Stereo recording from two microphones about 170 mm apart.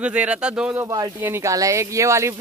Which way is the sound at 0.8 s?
20° right (ahead or behind).